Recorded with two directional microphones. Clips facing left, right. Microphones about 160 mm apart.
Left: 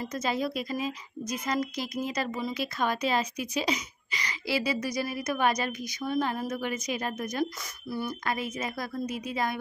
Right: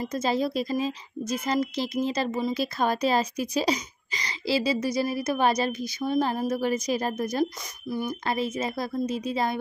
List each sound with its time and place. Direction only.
0.0 s a woman's voice: 30° right (ahead or behind)
7.9 s speech: 15° right (ahead or behind)
8.3 s speech: 30° right (ahead or behind)